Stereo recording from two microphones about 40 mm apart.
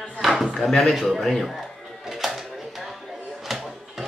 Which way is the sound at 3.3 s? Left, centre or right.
Centre.